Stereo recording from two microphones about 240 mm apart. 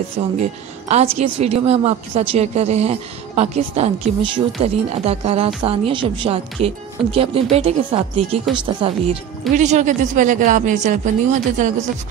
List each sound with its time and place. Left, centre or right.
0.4 s speech: right